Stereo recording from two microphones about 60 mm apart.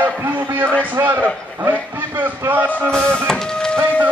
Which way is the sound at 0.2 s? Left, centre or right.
Right.